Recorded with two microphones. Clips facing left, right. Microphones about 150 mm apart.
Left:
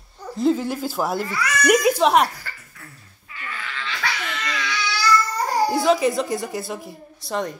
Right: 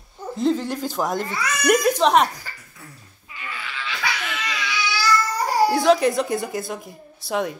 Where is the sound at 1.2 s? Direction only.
20° right (ahead or behind).